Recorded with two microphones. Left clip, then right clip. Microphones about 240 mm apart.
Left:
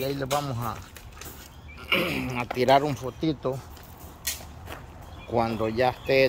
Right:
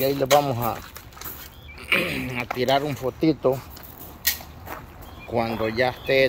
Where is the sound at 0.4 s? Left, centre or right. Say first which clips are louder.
Right 8 dB; centre.